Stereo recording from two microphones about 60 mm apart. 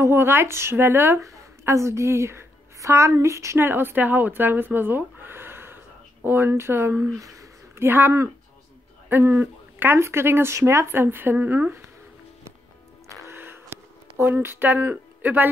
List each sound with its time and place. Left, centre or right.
0.0 s speech: right
1.2 s a woman's voice: right
3.5 s speech: right
7.2 s a sound: right
7.8 s speech: right
9.1 s speech: right
13.1 s music: right
13.4 s a sound: right
15.2 s speech: right